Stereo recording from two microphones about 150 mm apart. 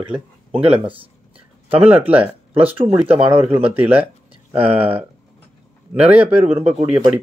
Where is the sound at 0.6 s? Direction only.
40° right (ahead or behind).